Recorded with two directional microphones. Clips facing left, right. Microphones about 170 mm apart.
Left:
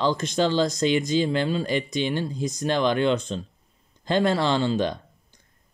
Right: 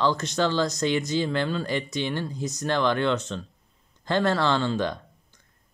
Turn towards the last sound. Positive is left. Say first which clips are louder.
# left 2 dB
turn(degrees=15)  # may be behind; listen again after turning